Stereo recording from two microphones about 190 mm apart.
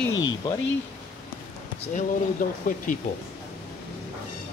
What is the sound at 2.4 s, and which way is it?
Speech, 45° left (ahead or behind).